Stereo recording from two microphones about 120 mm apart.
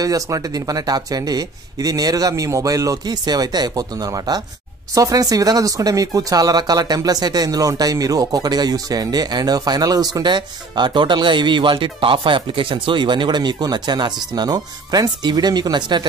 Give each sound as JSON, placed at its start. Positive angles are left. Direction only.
{"t": 0.0, "sound": "speech", "side_deg": -30}